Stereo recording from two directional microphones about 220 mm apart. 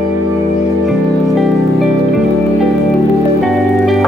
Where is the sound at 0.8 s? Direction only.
Centre (ahead or behind).